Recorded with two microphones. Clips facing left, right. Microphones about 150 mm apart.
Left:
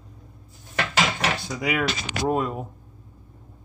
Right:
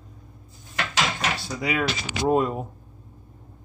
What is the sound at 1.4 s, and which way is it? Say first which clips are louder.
Mechanisms: left 1 dB; 10° left (ahead or behind).